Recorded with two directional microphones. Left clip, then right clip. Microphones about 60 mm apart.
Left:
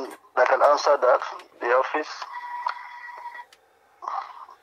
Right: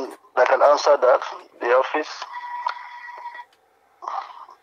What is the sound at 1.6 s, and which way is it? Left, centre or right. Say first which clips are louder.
Radio: right 3 dB; right.